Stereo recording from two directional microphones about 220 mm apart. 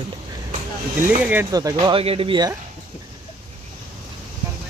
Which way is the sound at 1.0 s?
10° right (ahead or behind).